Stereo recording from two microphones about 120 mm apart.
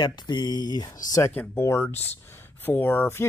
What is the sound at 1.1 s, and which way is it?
Speech, 20° left (ahead or behind).